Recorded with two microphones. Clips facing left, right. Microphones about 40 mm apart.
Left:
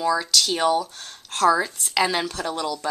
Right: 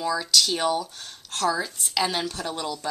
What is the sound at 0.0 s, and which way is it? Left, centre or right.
Speech, centre.